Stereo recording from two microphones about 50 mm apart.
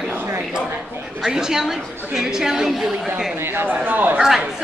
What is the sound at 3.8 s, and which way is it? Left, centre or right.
Speech, right.